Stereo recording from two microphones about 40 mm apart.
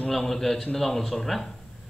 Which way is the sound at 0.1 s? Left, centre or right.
Centre.